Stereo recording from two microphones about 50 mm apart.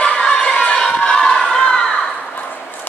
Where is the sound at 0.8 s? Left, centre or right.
Centre.